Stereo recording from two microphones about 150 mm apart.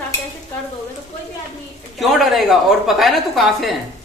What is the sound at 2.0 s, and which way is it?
A woman's voice, centre (ahead or behind).